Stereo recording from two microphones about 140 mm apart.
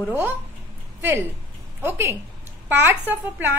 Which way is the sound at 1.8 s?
15° right (ahead or behind).